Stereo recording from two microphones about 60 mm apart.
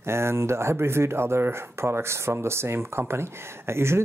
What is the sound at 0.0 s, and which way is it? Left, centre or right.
Speech, right.